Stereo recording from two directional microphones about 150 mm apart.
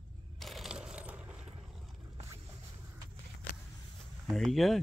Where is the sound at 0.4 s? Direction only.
Centre (ahead or behind).